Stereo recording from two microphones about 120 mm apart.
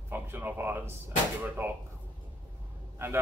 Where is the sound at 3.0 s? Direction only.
20° right (ahead or behind).